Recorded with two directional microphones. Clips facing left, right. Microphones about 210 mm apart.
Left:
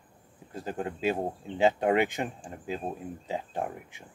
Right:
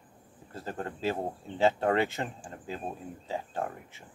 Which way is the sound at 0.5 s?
15° left (ahead or behind).